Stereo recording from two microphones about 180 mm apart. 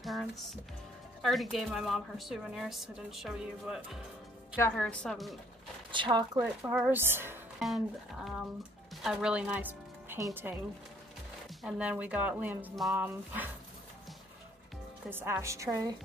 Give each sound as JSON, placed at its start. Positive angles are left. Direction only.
{"t": 0.0, "sound": "a woman's voice", "side_deg": 0}
{"t": 4.6, "sound": "a woman's voice", "side_deg": 10}
{"t": 5.9, "sound": "speech", "side_deg": -25}
{"t": 6.4, "sound": "speech", "side_deg": -10}
{"t": 7.5, "sound": "a woman's voice", "side_deg": 0}
{"t": 15.0, "sound": "speech", "side_deg": -15}